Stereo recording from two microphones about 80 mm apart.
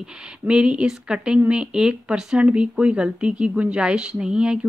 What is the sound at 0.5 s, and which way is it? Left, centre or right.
Speech, centre.